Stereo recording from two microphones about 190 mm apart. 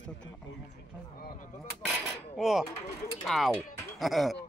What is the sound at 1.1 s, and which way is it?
Speech, 50° left (ahead or behind).